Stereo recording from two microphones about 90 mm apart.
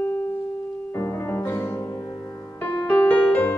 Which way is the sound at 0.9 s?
30° left (ahead or behind).